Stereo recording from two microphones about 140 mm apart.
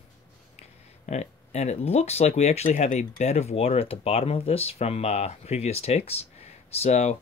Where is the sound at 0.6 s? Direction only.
55° left (ahead or behind).